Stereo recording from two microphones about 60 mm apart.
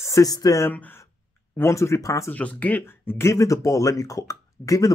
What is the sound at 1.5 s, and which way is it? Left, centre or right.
Speech, left.